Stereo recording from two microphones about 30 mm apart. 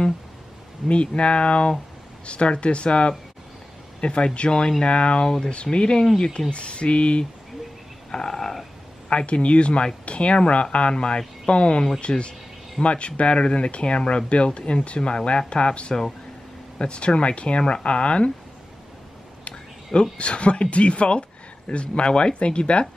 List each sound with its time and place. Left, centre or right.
1.0 s speech: left
4.5 s speech: left
4.8 s speech: left
5.2 s speech: left
5.5 s speech: left
8.1 s frog: centre
9.1 s speech: left
10.9 s speech: left
19.5 s a sound: left
20.2 s speech: left